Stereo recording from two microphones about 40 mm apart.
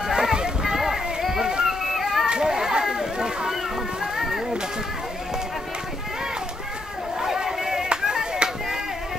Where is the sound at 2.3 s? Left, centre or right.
Centre.